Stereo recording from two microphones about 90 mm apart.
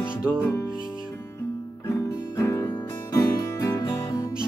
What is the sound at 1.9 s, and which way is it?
Music, 30° left (ahead or behind).